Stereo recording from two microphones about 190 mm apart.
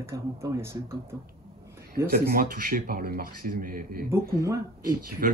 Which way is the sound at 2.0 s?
50° right (ahead or behind).